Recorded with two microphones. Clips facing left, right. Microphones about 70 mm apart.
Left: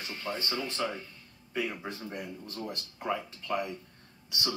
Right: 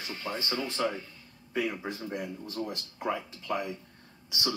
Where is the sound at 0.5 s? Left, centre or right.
Centre.